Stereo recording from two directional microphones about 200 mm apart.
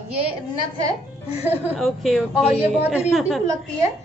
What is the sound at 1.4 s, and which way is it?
A woman's voice, 10° right (ahead or behind).